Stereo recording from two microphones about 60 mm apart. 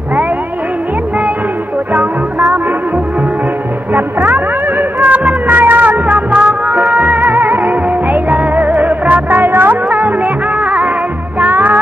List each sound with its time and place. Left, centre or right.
2.0 s music: right
3.9 s a sound: right; by 7.2 s centre
7.2 s music: right
11.4 s music: right